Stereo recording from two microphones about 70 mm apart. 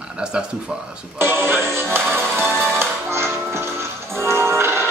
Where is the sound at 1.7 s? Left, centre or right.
Right.